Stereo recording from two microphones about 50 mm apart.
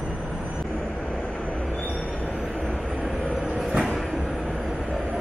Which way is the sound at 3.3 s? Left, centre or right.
Centre.